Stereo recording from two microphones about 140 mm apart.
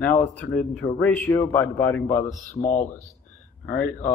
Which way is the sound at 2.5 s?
65° left (ahead or behind).